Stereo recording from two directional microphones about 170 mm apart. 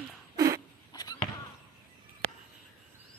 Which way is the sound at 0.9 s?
20° left (ahead or behind).